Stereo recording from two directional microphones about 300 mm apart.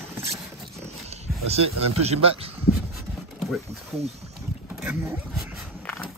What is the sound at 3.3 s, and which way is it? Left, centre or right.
Wild animals, centre.